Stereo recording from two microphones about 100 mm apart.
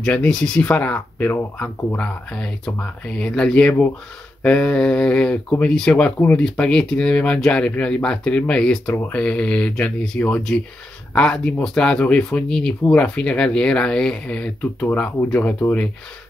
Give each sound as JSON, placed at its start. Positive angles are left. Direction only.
{"t": 0.0, "sound": "speech", "side_deg": 10}
{"t": 2.0, "sound": "speech", "side_deg": 10}